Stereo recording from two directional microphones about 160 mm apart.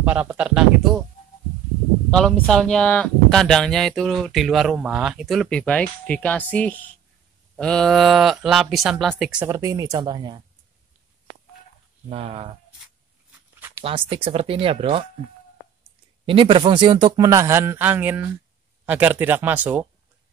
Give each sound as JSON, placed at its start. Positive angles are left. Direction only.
{"t": 0.0, "sound": "a man's voice", "side_deg": -10}
{"t": 2.0, "sound": "a man's voice", "side_deg": 5}
{"t": 9.5, "sound": "speech", "side_deg": -20}
{"t": 12.1, "sound": "speech", "side_deg": -35}
{"t": 13.6, "sound": "a sound", "side_deg": -15}
{"t": 13.8, "sound": "speech", "side_deg": -35}
{"t": 16.3, "sound": "a man's voice", "side_deg": -30}